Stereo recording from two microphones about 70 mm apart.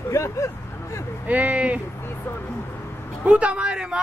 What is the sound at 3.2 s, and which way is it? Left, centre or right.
Speech, centre.